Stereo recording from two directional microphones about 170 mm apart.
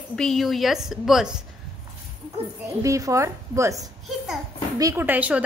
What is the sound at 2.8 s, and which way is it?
A woman's voice, 20° right (ahead or behind).